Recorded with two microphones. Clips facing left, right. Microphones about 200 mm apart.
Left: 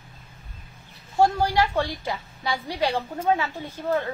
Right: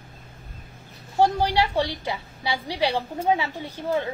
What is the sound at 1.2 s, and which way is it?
A woman's voice, 15° right (ahead or behind).